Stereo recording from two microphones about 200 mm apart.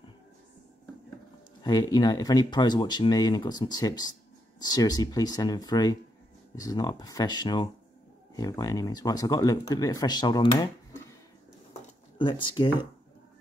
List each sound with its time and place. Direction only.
1.6 s speech: 20° left (ahead or behind)
12.2 s speech: 25° left (ahead or behind)